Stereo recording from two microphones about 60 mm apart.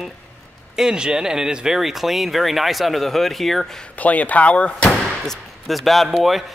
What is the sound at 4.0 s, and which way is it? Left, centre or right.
Speech, left.